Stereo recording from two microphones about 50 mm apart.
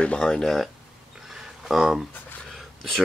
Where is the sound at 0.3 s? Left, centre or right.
Centre.